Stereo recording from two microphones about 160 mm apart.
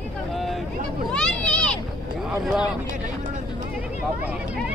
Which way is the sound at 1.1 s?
5° left (ahead or behind).